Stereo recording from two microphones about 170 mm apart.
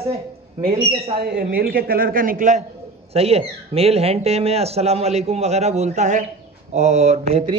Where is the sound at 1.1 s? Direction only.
65° right (ahead or behind).